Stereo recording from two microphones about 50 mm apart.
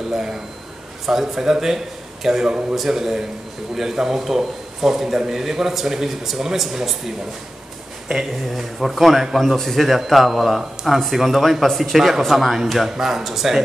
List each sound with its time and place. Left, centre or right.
0.1 s a man's voice: centre
8.1 s a man's voice: centre
8.5 s a man's voice: centre